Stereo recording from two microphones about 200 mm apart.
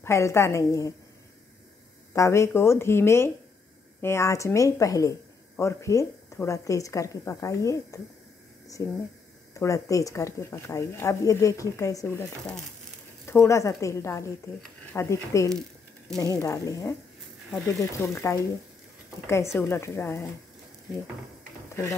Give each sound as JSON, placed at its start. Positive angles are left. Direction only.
{"t": 0.0, "sound": "speech", "side_deg": 15}
{"t": 2.1, "sound": "speech", "side_deg": 15}